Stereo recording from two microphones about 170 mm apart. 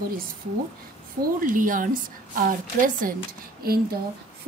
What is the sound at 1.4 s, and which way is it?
A woman's voice, 55° right (ahead or behind).